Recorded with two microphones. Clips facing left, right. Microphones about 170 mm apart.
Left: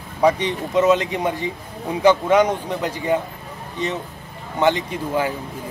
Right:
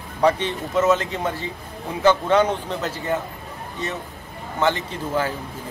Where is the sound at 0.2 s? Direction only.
15° left (ahead or behind).